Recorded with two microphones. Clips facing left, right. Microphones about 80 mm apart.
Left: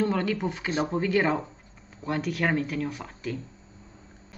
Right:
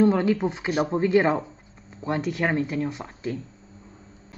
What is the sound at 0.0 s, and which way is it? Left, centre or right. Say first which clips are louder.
A woman's voice: right 6 dB; centre.